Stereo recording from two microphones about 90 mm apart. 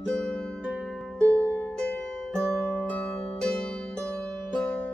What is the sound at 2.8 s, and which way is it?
Music, 15° left (ahead or behind).